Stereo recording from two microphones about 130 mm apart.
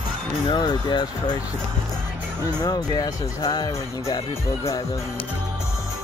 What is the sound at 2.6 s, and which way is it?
Speech, 30° left (ahead or behind).